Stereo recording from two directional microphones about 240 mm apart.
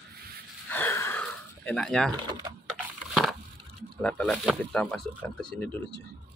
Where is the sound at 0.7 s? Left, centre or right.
Centre.